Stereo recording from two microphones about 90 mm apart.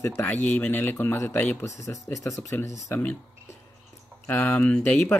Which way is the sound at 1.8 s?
35° left (ahead or behind).